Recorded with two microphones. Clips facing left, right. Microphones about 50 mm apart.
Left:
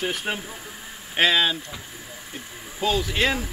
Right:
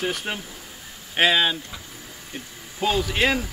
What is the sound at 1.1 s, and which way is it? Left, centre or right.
Speech, centre.